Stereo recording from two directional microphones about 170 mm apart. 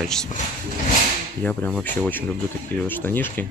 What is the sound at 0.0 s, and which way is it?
Speech, 5° left (ahead or behind).